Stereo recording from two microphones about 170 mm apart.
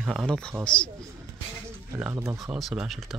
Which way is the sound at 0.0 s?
Centre (ahead or behind).